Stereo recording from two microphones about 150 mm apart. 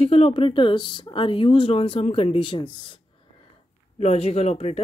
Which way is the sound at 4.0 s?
45° left (ahead or behind).